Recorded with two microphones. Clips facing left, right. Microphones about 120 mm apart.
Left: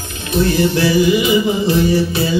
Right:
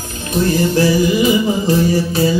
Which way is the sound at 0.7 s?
40° right (ahead or behind).